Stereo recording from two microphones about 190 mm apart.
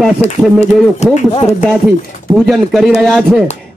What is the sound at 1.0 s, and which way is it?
Speech, 35° left (ahead or behind).